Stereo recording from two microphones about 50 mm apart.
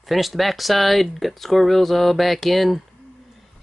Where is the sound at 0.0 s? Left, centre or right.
Centre.